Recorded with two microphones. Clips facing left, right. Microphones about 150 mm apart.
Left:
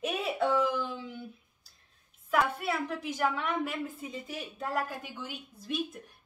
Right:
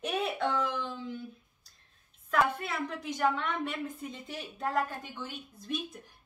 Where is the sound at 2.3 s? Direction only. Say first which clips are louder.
Left 1 dB; 5° left (ahead or behind).